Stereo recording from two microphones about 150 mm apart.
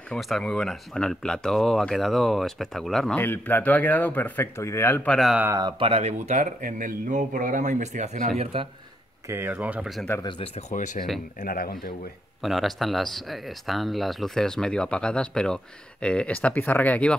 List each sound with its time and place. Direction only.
0.1 s speech: 5° left (ahead or behind)
5.6 s speech: 35° right (ahead or behind); by 8.3 s 50° right (ahead or behind)
8.5 s speech: 40° right (ahead or behind)
9.3 s speech: 15° right (ahead or behind)
10.2 s speech: 45° left (ahead or behind)
11.3 s speech: 80° left
12.4 s speech: centre (ahead or behind)